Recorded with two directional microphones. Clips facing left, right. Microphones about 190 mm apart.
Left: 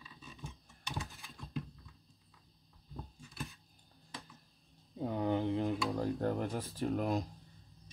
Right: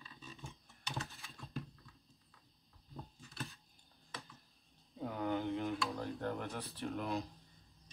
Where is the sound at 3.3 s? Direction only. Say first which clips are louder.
Left 2 dB; centre (ahead or behind).